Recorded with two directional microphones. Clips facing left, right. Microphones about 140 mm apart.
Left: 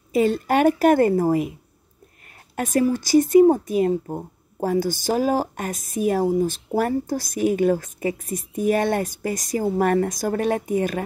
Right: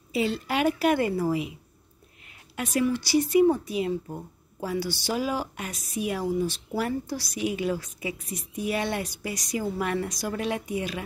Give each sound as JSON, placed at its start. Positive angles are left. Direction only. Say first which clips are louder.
{"t": 0.1, "sound": "a woman's voice", "louder": "left 8 dB", "side_deg": 50}